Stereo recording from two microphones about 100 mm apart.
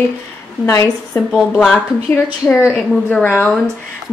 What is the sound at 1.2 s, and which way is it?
Speech, 25° left (ahead or behind).